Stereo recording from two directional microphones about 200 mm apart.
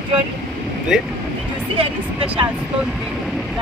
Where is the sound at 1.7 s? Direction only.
25° right (ahead or behind).